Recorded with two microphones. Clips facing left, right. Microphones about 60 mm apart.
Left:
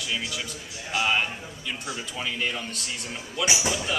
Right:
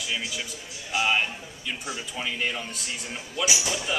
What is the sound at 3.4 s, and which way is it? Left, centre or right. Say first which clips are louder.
Speech: left 2 dB; left.